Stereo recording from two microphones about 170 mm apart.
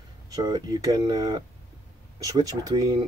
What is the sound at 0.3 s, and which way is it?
Speech, 25° right (ahead or behind).